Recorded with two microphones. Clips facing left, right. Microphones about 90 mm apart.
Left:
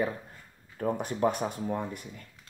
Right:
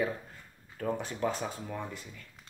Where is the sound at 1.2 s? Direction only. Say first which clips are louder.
Left 5 dB; 55° left (ahead or behind).